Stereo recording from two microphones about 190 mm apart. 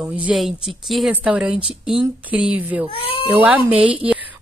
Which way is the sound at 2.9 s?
30° left (ahead or behind).